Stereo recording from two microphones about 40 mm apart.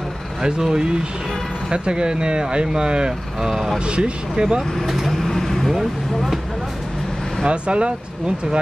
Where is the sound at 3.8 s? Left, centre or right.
Right.